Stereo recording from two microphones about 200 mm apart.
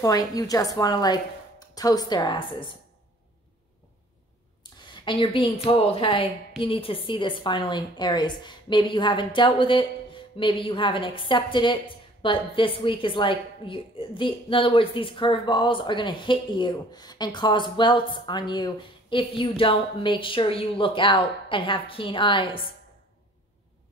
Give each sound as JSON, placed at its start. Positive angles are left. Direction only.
{"t": 0.0, "sound": "a woman's voice", "side_deg": 15}
{"t": 4.7, "sound": "a woman's voice", "side_deg": 25}